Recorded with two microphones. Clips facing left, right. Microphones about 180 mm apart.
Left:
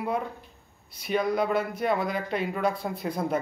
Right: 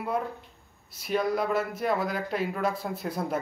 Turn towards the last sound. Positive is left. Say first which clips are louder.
# left 2 dB
turn(degrees=0)  # may be behind; listen again after turning